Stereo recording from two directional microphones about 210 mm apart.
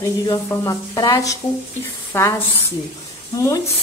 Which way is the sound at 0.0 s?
15° left (ahead or behind).